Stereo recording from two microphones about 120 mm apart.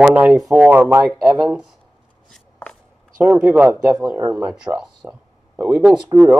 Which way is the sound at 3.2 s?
15° right (ahead or behind).